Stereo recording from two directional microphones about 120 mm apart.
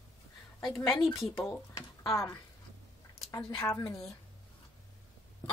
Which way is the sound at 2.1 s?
20° left (ahead or behind).